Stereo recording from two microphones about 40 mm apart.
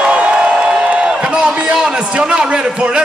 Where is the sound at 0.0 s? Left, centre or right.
Right.